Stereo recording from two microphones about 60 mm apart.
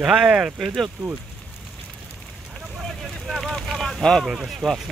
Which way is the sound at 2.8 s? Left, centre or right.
Centre.